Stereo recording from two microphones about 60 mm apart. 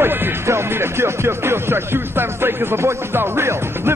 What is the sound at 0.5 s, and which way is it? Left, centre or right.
Music, right.